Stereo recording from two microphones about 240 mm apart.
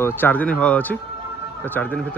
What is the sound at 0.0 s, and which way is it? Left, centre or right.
Speech, centre.